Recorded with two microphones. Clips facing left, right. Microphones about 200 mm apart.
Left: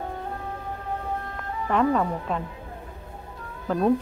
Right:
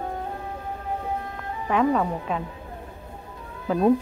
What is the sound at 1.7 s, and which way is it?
Speech, 5° right (ahead or behind).